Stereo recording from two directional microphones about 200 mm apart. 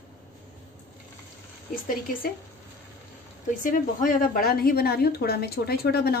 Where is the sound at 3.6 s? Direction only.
45° left (ahead or behind).